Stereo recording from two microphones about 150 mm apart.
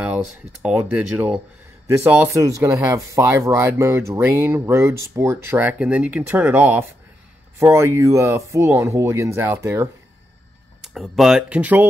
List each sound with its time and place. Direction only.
0.0 s speech: 10° right (ahead or behind)
10.8 s speech: centre (ahead or behind)